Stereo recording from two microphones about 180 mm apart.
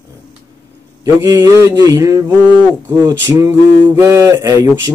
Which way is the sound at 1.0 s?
20° right (ahead or behind).